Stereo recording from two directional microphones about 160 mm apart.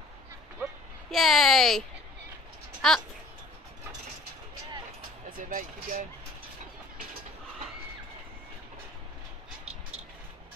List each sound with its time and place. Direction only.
1.1 s speech: centre (ahead or behind)
5.4 s speech: 55° right (ahead or behind)